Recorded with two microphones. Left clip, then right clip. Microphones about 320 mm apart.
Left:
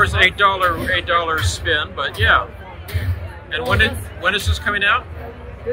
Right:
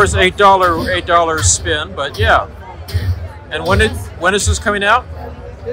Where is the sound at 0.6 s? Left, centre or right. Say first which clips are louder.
Right 4 dB; centre.